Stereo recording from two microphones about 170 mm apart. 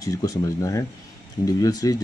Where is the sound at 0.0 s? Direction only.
20° left (ahead or behind).